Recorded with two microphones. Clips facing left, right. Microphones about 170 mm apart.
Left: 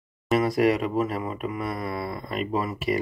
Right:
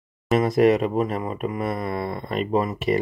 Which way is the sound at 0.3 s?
20° right (ahead or behind).